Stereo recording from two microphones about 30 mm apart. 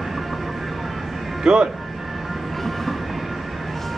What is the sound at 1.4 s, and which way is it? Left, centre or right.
Speech, right.